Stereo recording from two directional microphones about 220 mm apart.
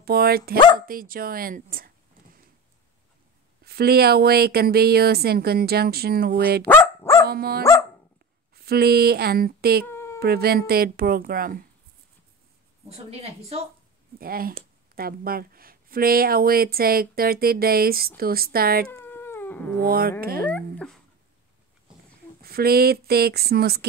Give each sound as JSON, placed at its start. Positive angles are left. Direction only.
{"t": 0.0, "sound": "speech", "side_deg": -45}
{"t": 3.6, "sound": "speech", "side_deg": -45}
{"t": 6.7, "sound": "dog", "side_deg": 10}
{"t": 7.2, "sound": "speech", "side_deg": -45}
{"t": 9.8, "sound": "cat", "side_deg": 10}
{"t": 10.2, "sound": "speech", "side_deg": -45}
{"t": 12.8, "sound": "a woman's voice", "side_deg": -30}
{"t": 14.1, "sound": "speech", "side_deg": -40}
{"t": 18.9, "sound": "cat", "side_deg": 10}
{"t": 19.8, "sound": "speech", "side_deg": -40}
{"t": 20.3, "sound": "speech", "side_deg": 5}
{"t": 22.4, "sound": "speech", "side_deg": -45}